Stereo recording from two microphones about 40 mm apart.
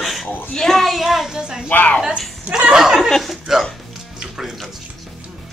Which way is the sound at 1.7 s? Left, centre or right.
Left.